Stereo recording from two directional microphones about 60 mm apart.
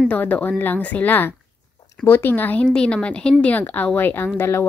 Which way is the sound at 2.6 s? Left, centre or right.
Centre.